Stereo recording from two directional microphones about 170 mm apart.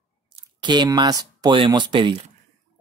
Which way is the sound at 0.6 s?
25° right (ahead or behind).